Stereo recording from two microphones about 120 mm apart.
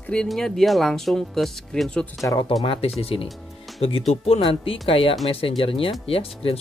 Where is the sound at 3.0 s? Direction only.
50° left (ahead or behind).